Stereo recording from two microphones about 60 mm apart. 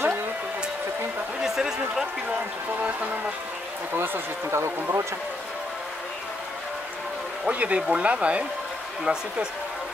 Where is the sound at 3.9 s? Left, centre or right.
Right.